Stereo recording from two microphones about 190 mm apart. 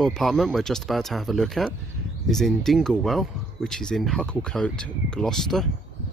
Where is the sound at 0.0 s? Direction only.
Centre (ahead or behind).